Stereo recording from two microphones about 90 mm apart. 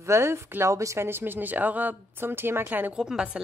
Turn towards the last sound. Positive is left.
turn(degrees=-10)  # may be behind; listen again after turning